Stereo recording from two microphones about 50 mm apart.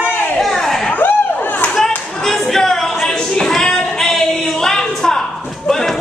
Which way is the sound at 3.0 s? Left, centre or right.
Centre.